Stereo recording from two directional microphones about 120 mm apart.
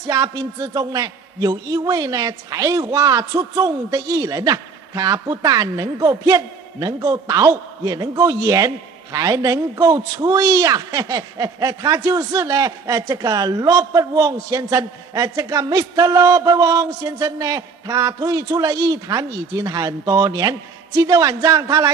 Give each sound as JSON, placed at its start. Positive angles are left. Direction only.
{"t": 0.0, "sound": "a man's voice", "side_deg": -30}